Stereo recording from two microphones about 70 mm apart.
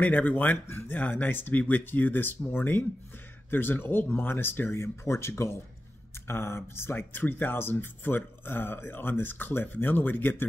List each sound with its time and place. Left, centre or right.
0.0 s speech: left